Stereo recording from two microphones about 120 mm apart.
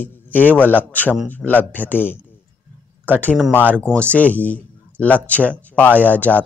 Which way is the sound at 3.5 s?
15° left (ahead or behind).